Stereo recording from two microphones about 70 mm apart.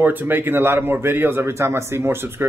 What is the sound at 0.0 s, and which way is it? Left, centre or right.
A man's voice, right.